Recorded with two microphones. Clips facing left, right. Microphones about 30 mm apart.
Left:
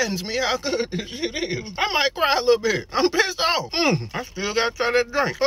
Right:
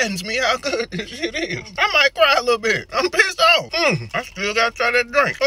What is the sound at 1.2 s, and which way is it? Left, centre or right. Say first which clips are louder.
Speech: right 3 dB; centre.